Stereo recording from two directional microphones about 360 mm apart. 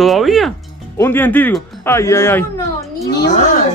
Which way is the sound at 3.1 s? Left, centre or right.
Left.